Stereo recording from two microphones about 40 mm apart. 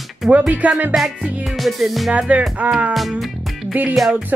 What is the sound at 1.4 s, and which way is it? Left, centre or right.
Music, centre.